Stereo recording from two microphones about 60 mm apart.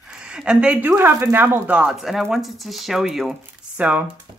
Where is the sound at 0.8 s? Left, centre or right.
Right.